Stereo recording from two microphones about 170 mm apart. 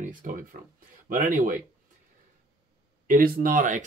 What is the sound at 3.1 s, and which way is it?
Speech, 55° right (ahead or behind).